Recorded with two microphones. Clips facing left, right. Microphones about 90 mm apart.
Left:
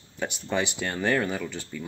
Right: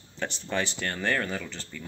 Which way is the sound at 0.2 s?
10° left (ahead or behind).